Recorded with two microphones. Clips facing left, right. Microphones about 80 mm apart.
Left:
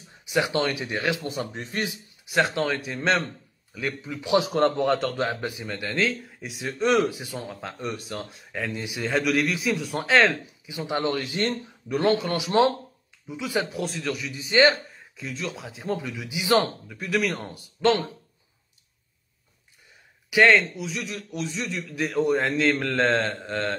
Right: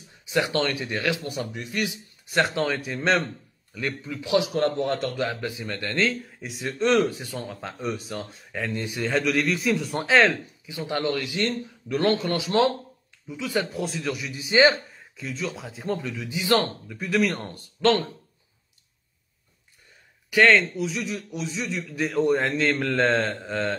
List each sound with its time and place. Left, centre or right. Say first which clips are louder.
0.3 s a man's voice: even; centre
2.2 s a man's voice: even; centre
4.0 s speech: even; centre
4.3 s a man's voice: left 1 dB; left
4.6 s a man's voice: left 2 dB; left
5.1 s a man's voice: left 1 dB; left
5.7 s speech: right 1 dB; centre
7.6 s a man's voice: right 2 dB; centre
10.7 s a man's voice: even; left; by 14.6 s centre
14.7 s a man's voice: left 1 dB; centre
16.9 s a man's voice: right 3 dB; centre
20.2 s a man's voice: even; centre